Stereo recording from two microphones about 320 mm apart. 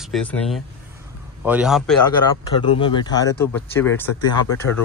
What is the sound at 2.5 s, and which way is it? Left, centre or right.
Speech, centre.